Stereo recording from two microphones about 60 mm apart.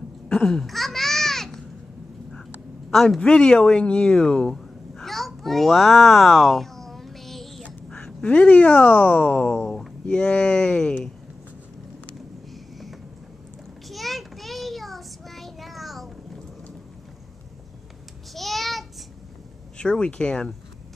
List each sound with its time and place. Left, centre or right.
0.5 s babbling: centre
2.9 s a woman's voice: centre
3.2 s speech: centre
7.9 s speech: left
9.6 s speech: centre
10.0 s speech: left
13.8 s child singing: centre
18.3 s a sound: centre
19.8 s speech: centre